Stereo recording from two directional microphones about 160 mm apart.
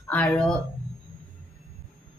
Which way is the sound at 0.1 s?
10° left (ahead or behind).